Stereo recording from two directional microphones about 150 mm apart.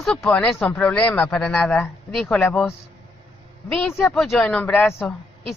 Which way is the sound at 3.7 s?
5° left (ahead or behind).